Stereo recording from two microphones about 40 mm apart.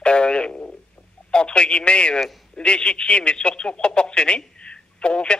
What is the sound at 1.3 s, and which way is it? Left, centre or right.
Speech, left.